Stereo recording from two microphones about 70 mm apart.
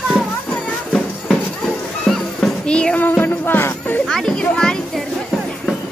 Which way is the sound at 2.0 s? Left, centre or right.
Centre.